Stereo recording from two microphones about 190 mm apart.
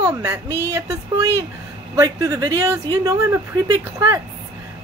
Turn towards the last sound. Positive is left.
turn(degrees=-15)  # may be behind; listen again after turning